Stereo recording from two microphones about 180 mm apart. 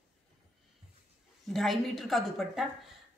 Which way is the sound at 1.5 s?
Centre (ahead or behind).